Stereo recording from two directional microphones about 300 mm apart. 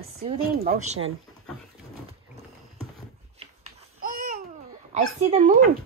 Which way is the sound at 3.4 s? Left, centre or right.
Right.